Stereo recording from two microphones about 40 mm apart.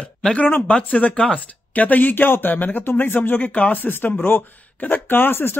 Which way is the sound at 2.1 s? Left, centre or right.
Left.